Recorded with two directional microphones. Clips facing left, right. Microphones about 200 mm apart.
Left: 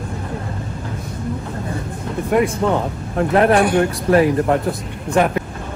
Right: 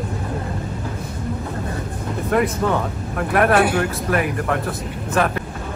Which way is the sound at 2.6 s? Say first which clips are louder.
Left 2 dB; 20° left (ahead or behind).